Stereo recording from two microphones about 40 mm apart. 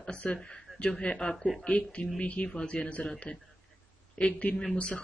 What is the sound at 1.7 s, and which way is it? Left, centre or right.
Speech, left.